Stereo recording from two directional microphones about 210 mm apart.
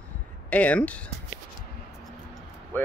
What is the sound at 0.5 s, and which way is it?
Speech, 5° left (ahead or behind).